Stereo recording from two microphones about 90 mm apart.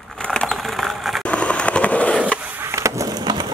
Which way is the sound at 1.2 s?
15° left (ahead or behind).